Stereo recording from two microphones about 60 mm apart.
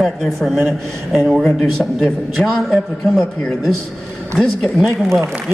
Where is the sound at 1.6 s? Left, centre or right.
Centre.